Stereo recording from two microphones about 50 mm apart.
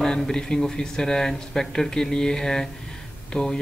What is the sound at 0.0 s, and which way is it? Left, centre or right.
Speech, centre.